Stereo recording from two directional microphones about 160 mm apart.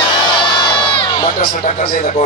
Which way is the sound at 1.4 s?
55° left (ahead or behind).